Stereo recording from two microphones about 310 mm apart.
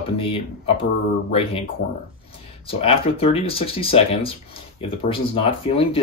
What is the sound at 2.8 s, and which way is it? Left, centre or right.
Speech, centre.